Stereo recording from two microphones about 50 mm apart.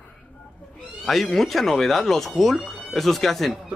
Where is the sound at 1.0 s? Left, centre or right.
Centre.